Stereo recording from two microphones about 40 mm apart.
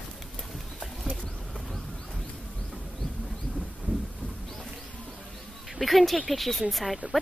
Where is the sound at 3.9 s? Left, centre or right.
Right.